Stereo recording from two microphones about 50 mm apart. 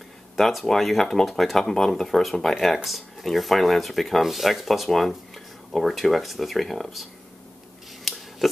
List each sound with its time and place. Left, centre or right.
0.4 s speech: centre
8.0 s scissors: centre